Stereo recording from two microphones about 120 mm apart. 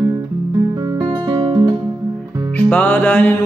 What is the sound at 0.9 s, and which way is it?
Music, 35° right (ahead or behind).